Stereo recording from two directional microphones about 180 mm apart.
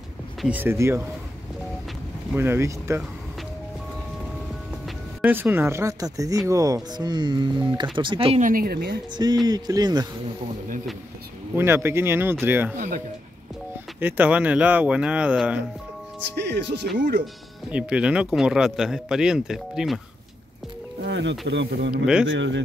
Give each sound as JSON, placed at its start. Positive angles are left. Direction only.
{"t": 0.4, "sound": "speech", "side_deg": -10}
{"t": 2.3, "sound": "speech", "side_deg": -10}
{"t": 4.8, "sound": "speech", "side_deg": -10}
{"t": 8.4, "sound": "a woman's voice", "side_deg": -50}
{"t": 9.1, "sound": "speech", "side_deg": -25}
{"t": 11.5, "sound": "speech", "side_deg": -15}
{"t": 12.7, "sound": "speech", "side_deg": -45}
{"t": 13.9, "sound": "speech", "side_deg": -10}
{"t": 16.3, "sound": "speech", "side_deg": -70}
{"t": 17.6, "sound": "speech", "side_deg": -5}
{"t": 21.0, "sound": "speech", "side_deg": -80}
{"t": 22.0, "sound": "speech", "side_deg": -5}
{"t": 22.3, "sound": "speech", "side_deg": -90}